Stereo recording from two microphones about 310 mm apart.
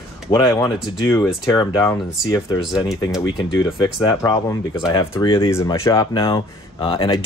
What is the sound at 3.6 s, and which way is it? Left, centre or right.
Speech, centre.